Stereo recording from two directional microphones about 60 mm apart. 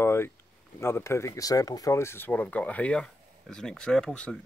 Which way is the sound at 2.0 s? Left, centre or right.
Left.